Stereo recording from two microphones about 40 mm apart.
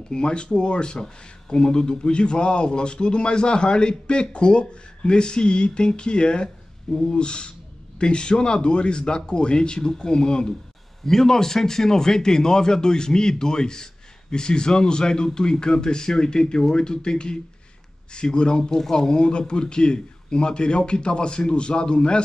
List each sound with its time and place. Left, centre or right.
0.1 s speech: left
6.9 s speech: centre
7.2 s speech: left